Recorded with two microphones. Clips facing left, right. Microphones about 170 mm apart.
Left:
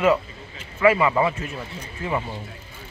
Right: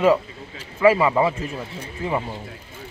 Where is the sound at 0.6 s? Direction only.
30° right (ahead or behind).